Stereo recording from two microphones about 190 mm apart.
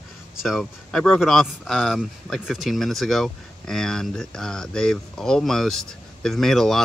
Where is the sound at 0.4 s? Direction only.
Centre (ahead or behind).